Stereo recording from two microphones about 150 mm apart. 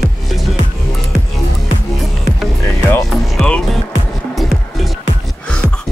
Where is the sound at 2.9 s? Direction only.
5° left (ahead or behind).